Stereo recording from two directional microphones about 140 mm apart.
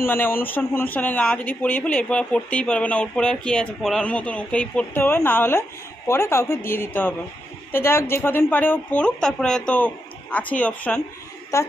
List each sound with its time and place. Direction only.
0.0 s a woman's voice: 15° left (ahead or behind)